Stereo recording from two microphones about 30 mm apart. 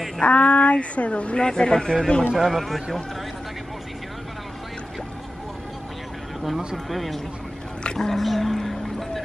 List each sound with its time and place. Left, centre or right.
0.2 s speech: left
1.4 s a man's voice: left
2.4 s speech: centre
6.9 s speech: centre
7.8 s dog: left
8.1 s speech: centre
8.5 s music: centre